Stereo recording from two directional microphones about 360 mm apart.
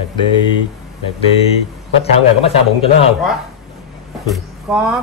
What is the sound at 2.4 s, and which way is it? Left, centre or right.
Speech, centre.